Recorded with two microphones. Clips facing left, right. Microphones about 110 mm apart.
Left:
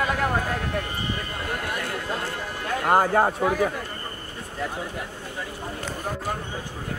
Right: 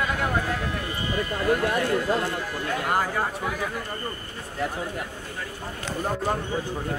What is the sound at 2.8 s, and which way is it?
Speech, 40° left (ahead or behind).